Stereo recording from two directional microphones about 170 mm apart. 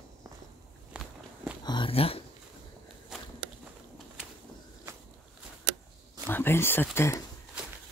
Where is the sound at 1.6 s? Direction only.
25° left (ahead or behind).